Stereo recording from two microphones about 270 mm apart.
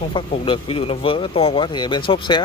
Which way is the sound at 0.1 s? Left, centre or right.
Centre.